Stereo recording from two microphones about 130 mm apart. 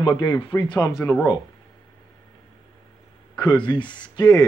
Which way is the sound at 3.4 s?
35° left (ahead or behind).